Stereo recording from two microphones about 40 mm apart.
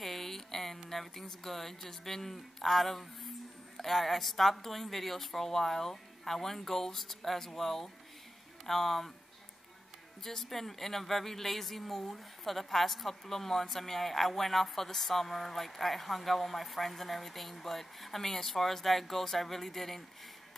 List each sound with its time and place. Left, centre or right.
0.0 s a sound: centre
0.8 s speech: centre
10.2 s speech: centre